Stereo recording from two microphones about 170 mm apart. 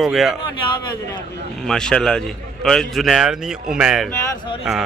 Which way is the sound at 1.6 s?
5° left (ahead or behind).